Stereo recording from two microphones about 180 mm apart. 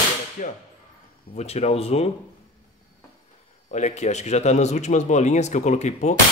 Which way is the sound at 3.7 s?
40° left (ahead or behind).